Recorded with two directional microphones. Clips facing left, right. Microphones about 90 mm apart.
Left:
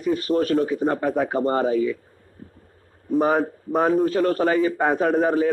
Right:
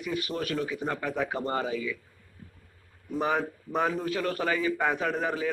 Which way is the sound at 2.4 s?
35° left (ahead or behind).